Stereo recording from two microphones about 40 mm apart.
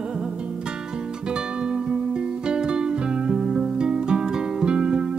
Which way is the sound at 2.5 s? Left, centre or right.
Right.